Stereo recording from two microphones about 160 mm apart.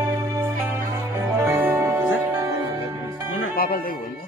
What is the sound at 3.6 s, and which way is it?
Music, 70° left (ahead or behind).